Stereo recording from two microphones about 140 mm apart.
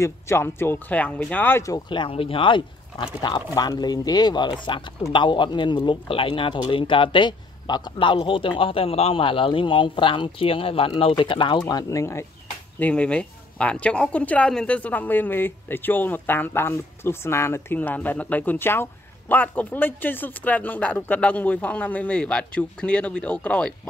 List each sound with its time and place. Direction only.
0.0 s speech: 15° left (ahead or behind)
1.9 s speech: 40° left (ahead or behind); by 12.3 s 20° left (ahead or behind)
12.7 s speech: 10° left (ahead or behind)